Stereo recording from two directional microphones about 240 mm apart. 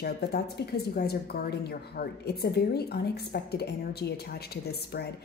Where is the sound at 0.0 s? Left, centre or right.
Left.